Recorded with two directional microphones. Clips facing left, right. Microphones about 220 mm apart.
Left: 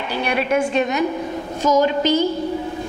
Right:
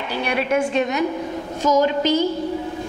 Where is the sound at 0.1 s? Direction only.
15° left (ahead or behind).